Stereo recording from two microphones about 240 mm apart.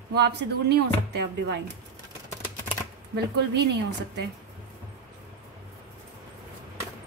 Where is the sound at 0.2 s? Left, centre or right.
Right.